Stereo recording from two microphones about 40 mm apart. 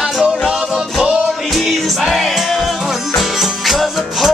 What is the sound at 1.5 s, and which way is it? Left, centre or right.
Music, centre.